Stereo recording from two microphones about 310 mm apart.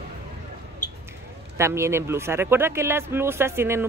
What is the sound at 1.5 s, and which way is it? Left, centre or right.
A woman's voice, centre.